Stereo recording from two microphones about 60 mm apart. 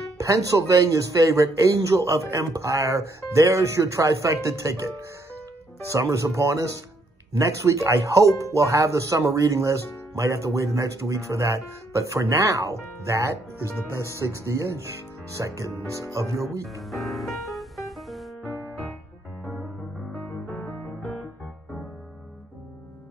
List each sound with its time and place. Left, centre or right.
0.2 s a man's voice: right
5.9 s a man's voice: right
16.9 s music: centre